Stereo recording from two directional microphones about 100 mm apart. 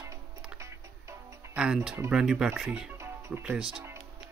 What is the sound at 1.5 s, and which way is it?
Speech, 10° right (ahead or behind).